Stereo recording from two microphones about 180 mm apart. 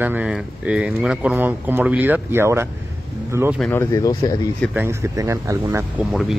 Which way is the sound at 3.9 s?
20° left (ahead or behind).